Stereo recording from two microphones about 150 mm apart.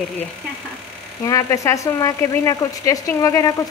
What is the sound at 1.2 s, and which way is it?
Speech, 20° left (ahead or behind).